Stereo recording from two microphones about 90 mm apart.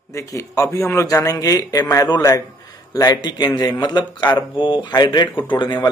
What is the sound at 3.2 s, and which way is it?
Speech, 55° left (ahead or behind).